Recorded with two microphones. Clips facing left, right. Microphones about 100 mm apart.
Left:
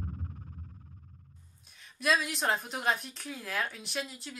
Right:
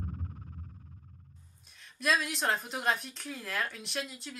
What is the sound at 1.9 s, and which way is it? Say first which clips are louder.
Speech: left 1 dB; centre (ahead or behind).